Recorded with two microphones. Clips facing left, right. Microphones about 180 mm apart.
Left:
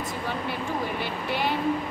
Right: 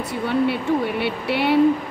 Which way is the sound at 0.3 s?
70° right (ahead or behind).